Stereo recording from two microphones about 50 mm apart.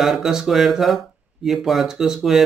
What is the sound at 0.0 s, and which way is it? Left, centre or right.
A man's voice, centre.